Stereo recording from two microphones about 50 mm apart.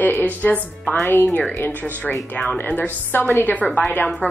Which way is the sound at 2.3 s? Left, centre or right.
Left.